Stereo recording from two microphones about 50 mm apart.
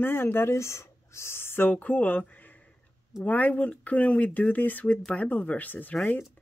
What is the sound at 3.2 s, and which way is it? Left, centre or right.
Speech, left.